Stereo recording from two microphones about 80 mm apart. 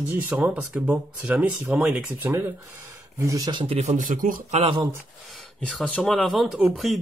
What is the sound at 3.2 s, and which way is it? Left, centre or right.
Speech, right.